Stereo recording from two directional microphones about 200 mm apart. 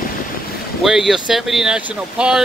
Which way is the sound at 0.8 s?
Centre (ahead or behind).